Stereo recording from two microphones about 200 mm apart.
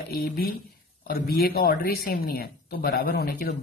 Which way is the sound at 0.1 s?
50° left (ahead or behind).